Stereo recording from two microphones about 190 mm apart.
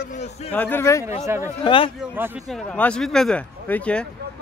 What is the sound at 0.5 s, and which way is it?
Speech, 10° left (ahead or behind).